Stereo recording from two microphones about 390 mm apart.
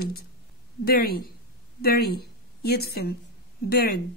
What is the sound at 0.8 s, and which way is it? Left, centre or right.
A woman's voice, left.